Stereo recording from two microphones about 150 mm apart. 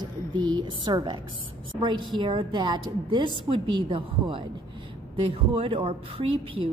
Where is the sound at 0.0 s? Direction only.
30° right (ahead or behind).